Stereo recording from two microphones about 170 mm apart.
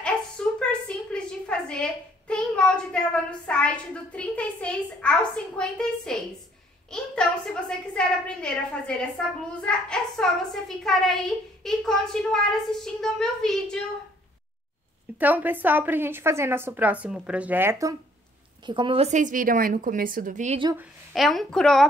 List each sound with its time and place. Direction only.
0.0 s a woman's voice: 5° left (ahead or behind)
15.1 s a woman's voice: 10° right (ahead or behind)
18.7 s a woman's voice: 30° right (ahead or behind)
19.0 s a woman's voice: 45° right (ahead or behind)
21.1 s a woman's voice: centre (ahead or behind)